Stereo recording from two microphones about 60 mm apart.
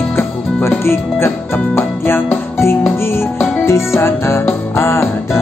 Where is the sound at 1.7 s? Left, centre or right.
Left.